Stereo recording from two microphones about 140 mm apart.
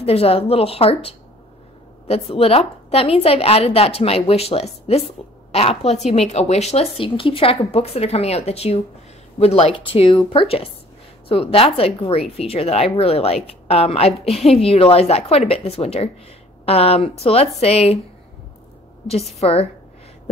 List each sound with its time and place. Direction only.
0.0 s a woman's voice: 45° left (ahead or behind)
19.0 s a woman's voice: 50° left (ahead or behind)